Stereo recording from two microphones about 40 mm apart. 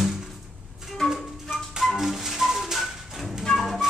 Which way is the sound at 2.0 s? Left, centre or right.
Centre.